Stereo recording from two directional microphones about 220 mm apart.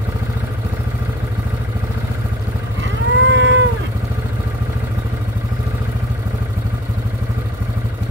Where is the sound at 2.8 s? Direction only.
55° right (ahead or behind).